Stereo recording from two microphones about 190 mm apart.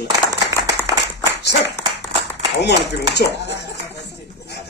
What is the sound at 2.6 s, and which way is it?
Speech, 60° left (ahead or behind).